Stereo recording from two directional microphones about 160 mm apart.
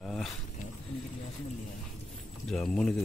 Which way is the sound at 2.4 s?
5° left (ahead or behind).